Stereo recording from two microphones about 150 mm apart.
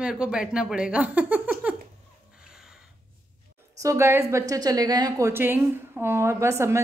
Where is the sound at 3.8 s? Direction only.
20° right (ahead or behind).